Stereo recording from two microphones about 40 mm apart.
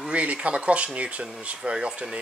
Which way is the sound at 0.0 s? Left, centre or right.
Right.